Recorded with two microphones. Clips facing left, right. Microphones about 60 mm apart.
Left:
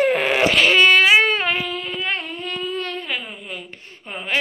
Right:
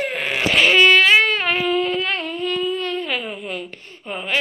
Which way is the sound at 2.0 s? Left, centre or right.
Left.